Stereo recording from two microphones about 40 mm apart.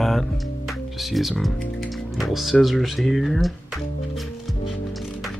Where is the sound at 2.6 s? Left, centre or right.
Centre.